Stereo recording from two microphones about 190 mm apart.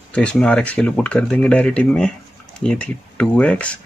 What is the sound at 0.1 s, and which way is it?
Speech, 5° left (ahead or behind).